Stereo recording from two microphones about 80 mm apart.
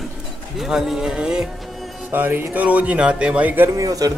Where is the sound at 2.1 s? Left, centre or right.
Right.